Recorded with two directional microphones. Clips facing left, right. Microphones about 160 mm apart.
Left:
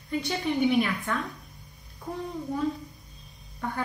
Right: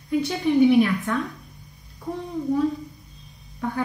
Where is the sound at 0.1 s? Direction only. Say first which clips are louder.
Right 7 dB; 5° right (ahead or behind).